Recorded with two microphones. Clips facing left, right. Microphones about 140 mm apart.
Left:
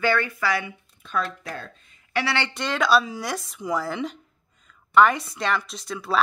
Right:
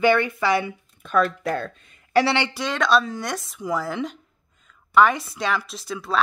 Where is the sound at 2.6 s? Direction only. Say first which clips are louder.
Left 1 dB; centre (ahead or behind).